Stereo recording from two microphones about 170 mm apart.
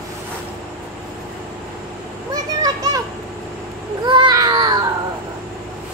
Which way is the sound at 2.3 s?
20° right (ahead or behind).